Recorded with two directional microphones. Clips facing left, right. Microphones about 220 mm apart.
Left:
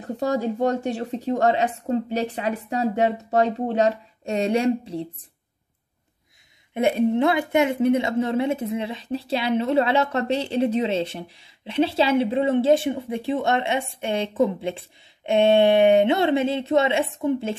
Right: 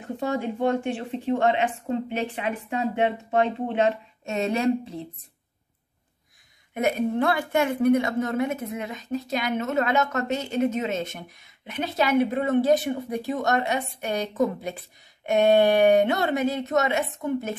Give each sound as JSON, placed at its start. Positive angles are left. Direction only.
{"t": 0.0, "sound": "speech", "side_deg": 35}
{"t": 6.7, "sound": "a woman's voice", "side_deg": 30}